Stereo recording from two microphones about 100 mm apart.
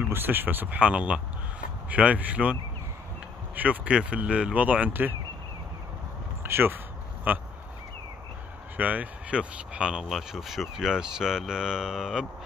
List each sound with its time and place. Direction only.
0.0 s speech: 20° right (ahead or behind)
3.5 s speech: 15° right (ahead or behind)
6.4 s speech: 20° right (ahead or behind)
8.7 s speech: 15° right (ahead or behind)